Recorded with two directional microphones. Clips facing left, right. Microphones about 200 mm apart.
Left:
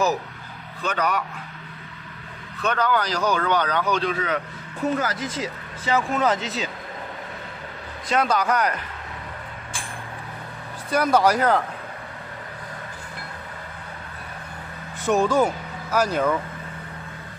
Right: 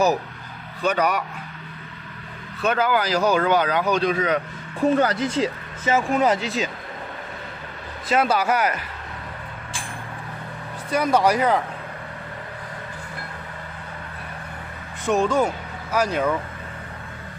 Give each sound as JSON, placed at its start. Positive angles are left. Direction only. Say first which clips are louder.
{"t": 0.8, "sound": "speech", "louder": "right 3 dB", "side_deg": -10}
{"t": 2.6, "sound": "speech", "louder": "right 2 dB", "side_deg": -10}
{"t": 4.9, "sound": "speech", "louder": "right 6 dB", "side_deg": -30}
{"t": 5.9, "sound": "speech", "louder": "right 2 dB", "side_deg": -15}
{"t": 8.1, "sound": "speech", "louder": "right 1 dB", "side_deg": -5}
{"t": 10.9, "sound": "speech", "louder": "even", "side_deg": 0}
{"t": 15.0, "sound": "speech", "louder": "left 1 dB", "side_deg": 5}